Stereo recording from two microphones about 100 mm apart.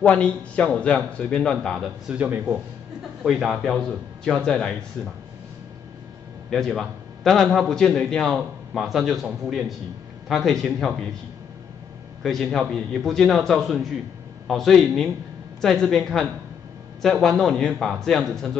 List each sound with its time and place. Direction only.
0.0 s a man's voice: 10° left (ahead or behind)
2.1 s speech: 15° right (ahead or behind)
3.3 s a man's voice: 5° right (ahead or behind)
6.5 s a man's voice: centre (ahead or behind)
12.2 s a man's voice: 5° left (ahead or behind)